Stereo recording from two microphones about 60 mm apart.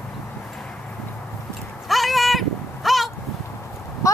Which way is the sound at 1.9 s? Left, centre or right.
Centre.